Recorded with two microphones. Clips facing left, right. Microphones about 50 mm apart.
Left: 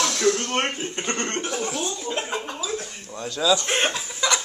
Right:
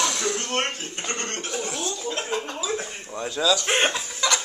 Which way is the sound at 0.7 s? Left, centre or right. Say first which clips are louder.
Left 4 dB; left.